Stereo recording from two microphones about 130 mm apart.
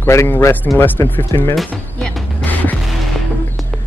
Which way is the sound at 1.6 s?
10° left (ahead or behind).